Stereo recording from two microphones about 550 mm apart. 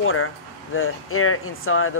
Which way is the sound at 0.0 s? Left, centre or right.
Left.